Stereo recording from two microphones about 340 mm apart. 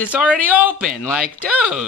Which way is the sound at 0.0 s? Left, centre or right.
Centre.